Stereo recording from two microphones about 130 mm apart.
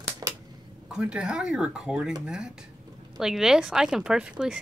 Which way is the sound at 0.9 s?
5° right (ahead or behind).